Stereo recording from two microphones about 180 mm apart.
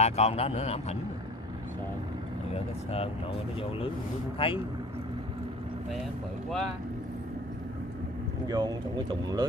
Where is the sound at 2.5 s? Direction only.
35° left (ahead or behind).